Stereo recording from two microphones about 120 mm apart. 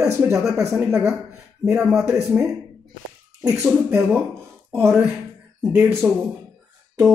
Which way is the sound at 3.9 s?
20° right (ahead or behind).